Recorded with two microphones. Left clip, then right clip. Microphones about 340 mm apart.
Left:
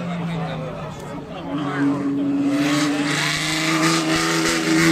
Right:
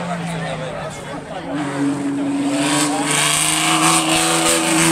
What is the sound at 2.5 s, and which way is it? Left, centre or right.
Vehicle, centre.